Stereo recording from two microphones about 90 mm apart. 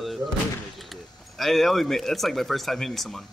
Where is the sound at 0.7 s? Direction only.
Centre (ahead or behind).